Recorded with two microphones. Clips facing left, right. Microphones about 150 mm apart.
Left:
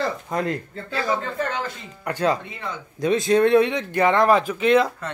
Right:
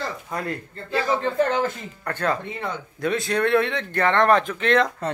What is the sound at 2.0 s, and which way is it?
A man's voice, 15° left (ahead or behind).